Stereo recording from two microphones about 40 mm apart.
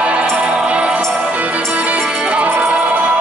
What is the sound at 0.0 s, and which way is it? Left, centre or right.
Music, right.